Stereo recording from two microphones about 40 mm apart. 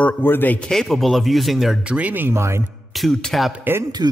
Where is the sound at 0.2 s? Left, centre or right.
Left.